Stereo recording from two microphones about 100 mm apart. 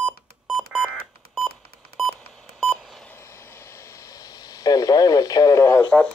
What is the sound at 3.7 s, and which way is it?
Radio, 30° left (ahead or behind).